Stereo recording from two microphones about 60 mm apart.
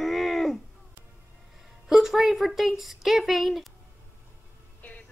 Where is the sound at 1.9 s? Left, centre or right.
Centre.